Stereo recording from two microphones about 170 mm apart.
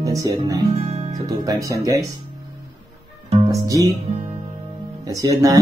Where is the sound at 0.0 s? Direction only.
20° right (ahead or behind).